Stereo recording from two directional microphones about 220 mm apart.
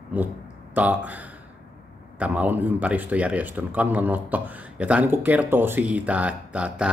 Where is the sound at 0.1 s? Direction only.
5° right (ahead or behind).